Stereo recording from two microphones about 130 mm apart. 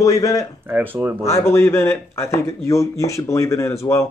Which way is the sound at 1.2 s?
20° left (ahead or behind).